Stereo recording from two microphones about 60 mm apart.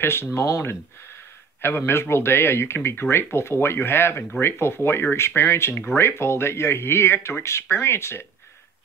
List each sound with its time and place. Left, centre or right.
0.0 s speech: left
1.9 s speech: left